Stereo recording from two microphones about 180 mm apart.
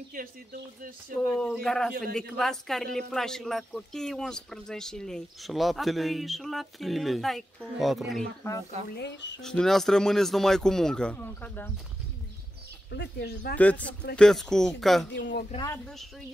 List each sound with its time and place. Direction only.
1.1 s speech: 5° left (ahead or behind)
9.4 s speech: 5° left (ahead or behind)
12.9 s speech: 70° left (ahead or behind)
13.6 s speech: 10° left (ahead or behind)
15.1 s speech: 75° left (ahead or behind)